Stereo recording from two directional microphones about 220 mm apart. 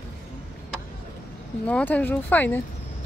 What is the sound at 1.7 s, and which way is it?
Speech, 10° left (ahead or behind).